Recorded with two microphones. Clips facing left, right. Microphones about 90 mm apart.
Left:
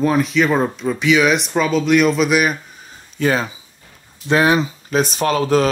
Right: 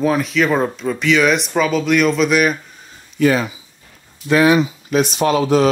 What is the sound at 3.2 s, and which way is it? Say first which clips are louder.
Speech: right 3 dB; 30° left (ahead or behind).